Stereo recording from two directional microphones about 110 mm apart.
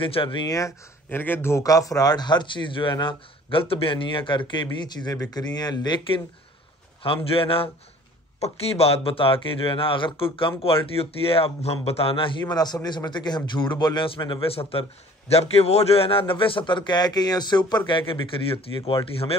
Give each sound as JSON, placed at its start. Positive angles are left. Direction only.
{"t": 0.0, "sound": "speech", "side_deg": 50}
{"t": 0.5, "sound": "a man's voice", "side_deg": 30}
{"t": 7.0, "sound": "a man's voice", "side_deg": 55}
{"t": 8.4, "sound": "a man's voice", "side_deg": 65}
{"t": 12.4, "sound": "a man's voice", "side_deg": 35}
{"t": 14.4, "sound": "a man's voice", "side_deg": 60}
{"t": 15.3, "sound": "a man's voice", "side_deg": 70}